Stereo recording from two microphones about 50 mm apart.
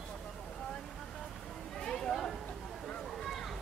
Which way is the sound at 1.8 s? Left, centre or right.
Centre.